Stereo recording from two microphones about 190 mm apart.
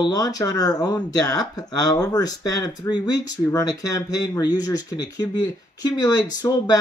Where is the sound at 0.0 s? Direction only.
20° left (ahead or behind).